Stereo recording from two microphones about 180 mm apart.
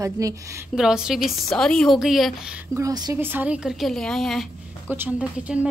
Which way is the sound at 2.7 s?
20° right (ahead or behind).